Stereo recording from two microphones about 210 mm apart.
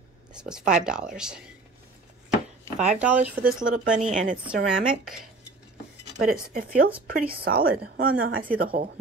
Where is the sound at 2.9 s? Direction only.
5° right (ahead or behind).